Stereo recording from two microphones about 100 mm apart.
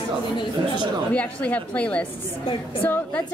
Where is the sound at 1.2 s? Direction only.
15° left (ahead or behind).